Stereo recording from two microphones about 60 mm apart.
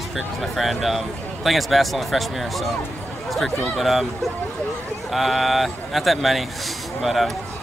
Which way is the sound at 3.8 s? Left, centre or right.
Centre.